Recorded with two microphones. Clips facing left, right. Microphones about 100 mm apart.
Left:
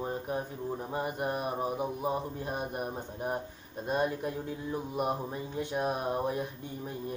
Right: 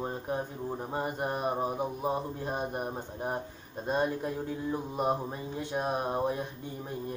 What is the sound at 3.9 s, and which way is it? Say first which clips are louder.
Mantra: right 1 dB; 25° right (ahead or behind).